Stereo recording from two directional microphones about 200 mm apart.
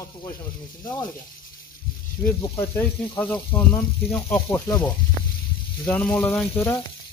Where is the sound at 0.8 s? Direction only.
20° left (ahead or behind).